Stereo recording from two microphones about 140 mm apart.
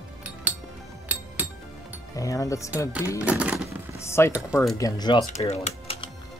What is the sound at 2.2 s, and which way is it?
Speech, 25° left (ahead or behind).